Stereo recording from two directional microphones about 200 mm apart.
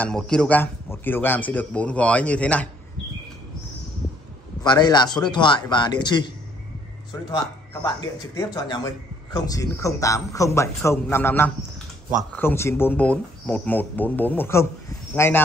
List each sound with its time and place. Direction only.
0.0 s speech: 5° left (ahead or behind)
4.6 s a man's voice: 20° left (ahead or behind)
12.1 s speech: centre (ahead or behind)
12.4 s speech: 10° left (ahead or behind)